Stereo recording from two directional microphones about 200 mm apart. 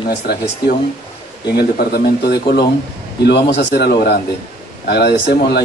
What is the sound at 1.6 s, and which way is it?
Speech, 50° left (ahead or behind).